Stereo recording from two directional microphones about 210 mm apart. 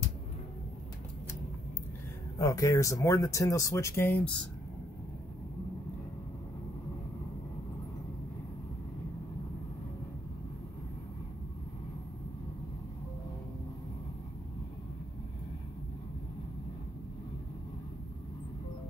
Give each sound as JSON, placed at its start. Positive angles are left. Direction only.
{"t": 2.3, "sound": "speech", "side_deg": 15}